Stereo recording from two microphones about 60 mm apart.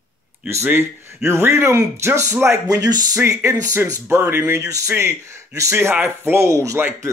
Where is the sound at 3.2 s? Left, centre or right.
Right.